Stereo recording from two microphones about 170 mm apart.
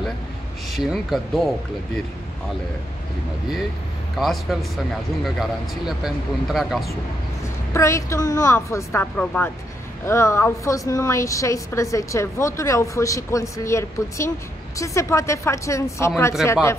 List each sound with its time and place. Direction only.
0.7 s speech: centre (ahead or behind)
4.2 s speech: centre (ahead or behind)
7.7 s a woman's voice: 15° left (ahead or behind)